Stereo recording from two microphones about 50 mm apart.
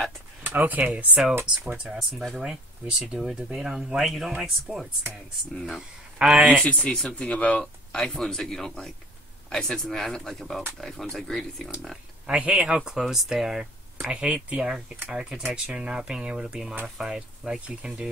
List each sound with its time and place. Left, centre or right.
0.6 s speech: right
0.8 s speech: right
2.0 s speech: centre
2.4 s speech: centre
5.5 s speech: centre
6.3 s speech: right
6.6 s speech: left
8.0 s speech: centre
12.3 s speech: right
12.6 s speech: centre
14.1 s speech: right